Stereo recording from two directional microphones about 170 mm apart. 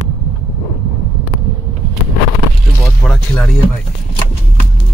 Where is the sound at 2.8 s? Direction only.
5° left (ahead or behind).